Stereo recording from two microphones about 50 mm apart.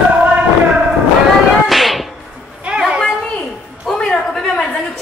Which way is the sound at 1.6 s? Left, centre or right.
Centre.